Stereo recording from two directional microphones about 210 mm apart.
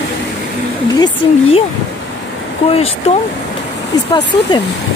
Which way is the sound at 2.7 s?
30° left (ahead or behind).